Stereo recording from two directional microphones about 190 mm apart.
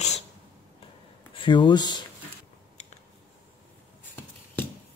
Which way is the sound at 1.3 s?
25° left (ahead or behind).